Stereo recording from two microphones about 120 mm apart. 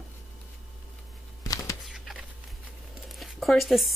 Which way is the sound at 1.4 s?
30° left (ahead or behind).